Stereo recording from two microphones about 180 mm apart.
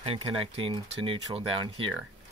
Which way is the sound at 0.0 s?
30° right (ahead or behind).